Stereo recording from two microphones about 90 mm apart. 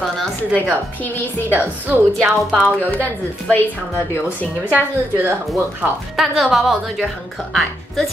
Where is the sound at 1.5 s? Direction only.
20° right (ahead or behind).